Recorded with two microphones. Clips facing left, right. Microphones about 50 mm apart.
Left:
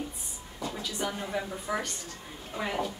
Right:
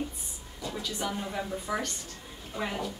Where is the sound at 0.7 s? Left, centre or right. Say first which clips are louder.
Right 1 dB; centre.